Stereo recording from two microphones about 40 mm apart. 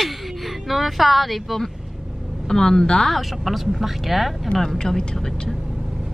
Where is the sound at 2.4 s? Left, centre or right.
Centre.